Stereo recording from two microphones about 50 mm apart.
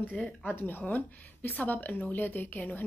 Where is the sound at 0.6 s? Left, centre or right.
Left.